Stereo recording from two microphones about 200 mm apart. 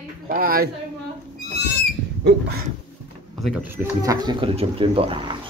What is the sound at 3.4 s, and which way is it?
Speech, 5° right (ahead or behind).